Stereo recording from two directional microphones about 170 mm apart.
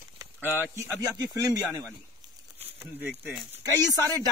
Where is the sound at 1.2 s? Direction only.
20° right (ahead or behind).